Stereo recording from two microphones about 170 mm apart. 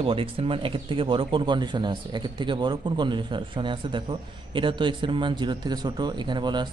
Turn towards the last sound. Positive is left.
turn(degrees=-25)  # may be behind; listen again after turning